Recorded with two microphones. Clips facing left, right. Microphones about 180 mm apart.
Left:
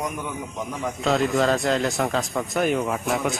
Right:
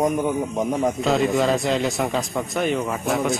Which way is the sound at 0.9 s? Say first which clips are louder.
Left 3 dB; centre (ahead or behind).